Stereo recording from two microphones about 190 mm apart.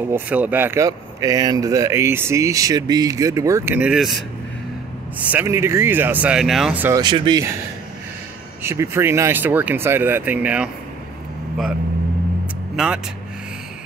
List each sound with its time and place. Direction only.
0.0 s speech: 10° right (ahead or behind)
5.3 s speech: 10° right (ahead or behind)
7.0 s speech: 25° right (ahead or behind)
8.6 s speech: 15° right (ahead or behind)
12.7 s speech: 5° right (ahead or behind)